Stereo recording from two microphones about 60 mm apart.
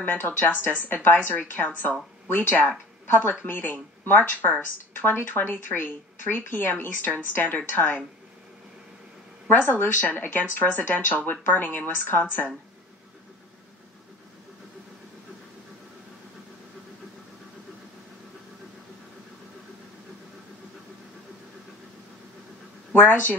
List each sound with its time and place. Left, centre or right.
0.0 s speech: left
9.5 s speech: left
22.9 s speech: left